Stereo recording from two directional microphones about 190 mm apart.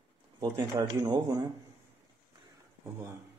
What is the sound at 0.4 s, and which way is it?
Speech, 20° right (ahead or behind).